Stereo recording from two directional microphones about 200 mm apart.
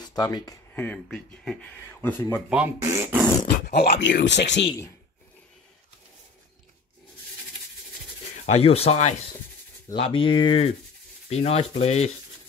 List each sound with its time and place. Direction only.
0.0 s speech: 20° left (ahead or behind)
0.7 s speech: 5° left (ahead or behind)
2.5 s speech: 10° right (ahead or behind)
3.6 s speech: 50° left (ahead or behind)
8.5 s speech: 30° left (ahead or behind)